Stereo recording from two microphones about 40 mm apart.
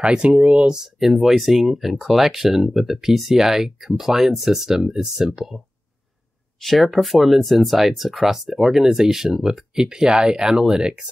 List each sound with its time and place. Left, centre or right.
0.0 s speech: right
0.7 s speech: centre
6.6 s speech: centre